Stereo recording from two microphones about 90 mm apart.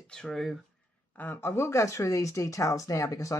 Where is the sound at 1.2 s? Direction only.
25° left (ahead or behind).